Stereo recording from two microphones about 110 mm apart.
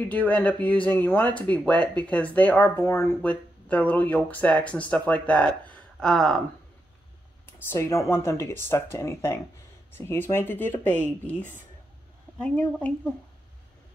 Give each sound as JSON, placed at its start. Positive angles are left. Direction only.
{"t": 0.1, "sound": "speech", "side_deg": 15}
{"t": 2.8, "sound": "speech", "side_deg": 25}
{"t": 3.2, "sound": "speech", "side_deg": 10}
{"t": 7.4, "sound": "speech", "side_deg": 20}